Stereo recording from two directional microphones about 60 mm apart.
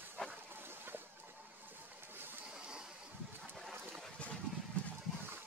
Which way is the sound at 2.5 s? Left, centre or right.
Centre.